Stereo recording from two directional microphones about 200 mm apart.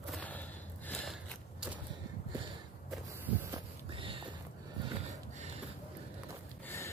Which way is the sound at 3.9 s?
25° right (ahead or behind).